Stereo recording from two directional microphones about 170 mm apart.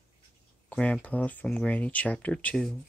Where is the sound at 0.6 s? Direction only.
5° left (ahead or behind).